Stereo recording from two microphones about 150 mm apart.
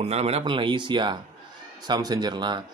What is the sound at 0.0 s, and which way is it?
Speech, 45° right (ahead or behind).